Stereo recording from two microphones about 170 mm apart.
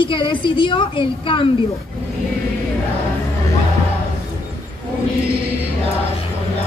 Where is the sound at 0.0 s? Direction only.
30° left (ahead or behind).